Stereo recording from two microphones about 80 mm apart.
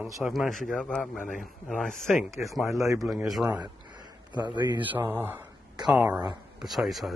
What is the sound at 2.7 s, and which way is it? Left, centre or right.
Speech, right.